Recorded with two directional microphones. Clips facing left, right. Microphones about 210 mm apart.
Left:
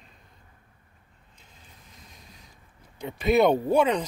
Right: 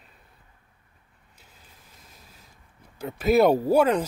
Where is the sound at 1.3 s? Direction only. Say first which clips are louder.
Even; 5° right (ahead or behind).